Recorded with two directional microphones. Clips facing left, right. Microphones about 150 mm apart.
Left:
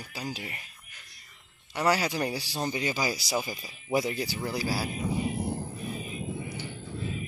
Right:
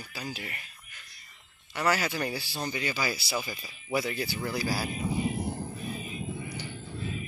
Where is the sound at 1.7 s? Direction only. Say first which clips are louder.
Left 2 dB; 15° left (ahead or behind).